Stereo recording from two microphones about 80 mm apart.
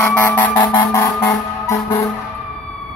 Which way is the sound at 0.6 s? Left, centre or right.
Left.